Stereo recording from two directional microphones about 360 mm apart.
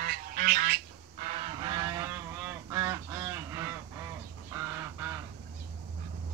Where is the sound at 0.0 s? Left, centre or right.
Right.